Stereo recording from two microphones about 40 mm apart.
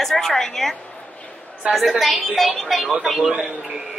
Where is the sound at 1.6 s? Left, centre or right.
Right.